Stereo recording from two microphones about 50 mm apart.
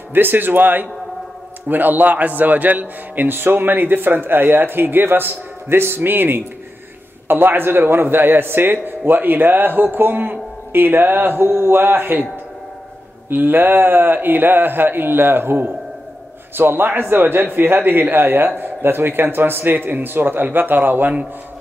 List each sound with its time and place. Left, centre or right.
0.1 s a man's voice: right
13.3 s a man's voice: right